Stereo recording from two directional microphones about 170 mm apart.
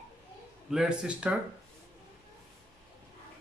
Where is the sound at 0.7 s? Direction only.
5° right (ahead or behind).